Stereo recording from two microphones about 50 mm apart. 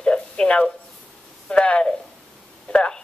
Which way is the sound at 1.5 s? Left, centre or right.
Left.